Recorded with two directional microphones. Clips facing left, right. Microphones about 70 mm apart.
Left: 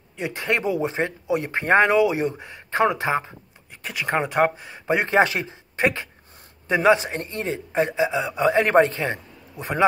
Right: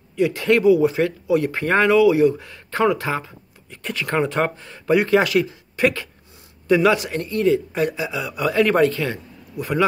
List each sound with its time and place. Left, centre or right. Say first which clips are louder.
0.1 s speech: right 7 dB; left
3.8 s speech: right 2 dB; centre